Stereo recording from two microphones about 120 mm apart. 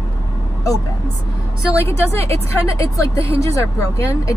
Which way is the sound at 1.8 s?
20° left (ahead or behind).